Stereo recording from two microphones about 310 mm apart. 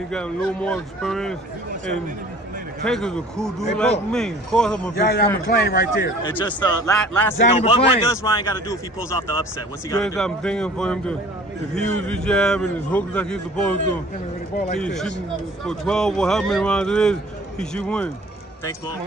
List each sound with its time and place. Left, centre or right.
0.1 s speech: centre
2.8 s speech: centre
4.9 s a man's voice: left
6.2 s speech: centre
7.6 s speech: centre
14.8 s speech: centre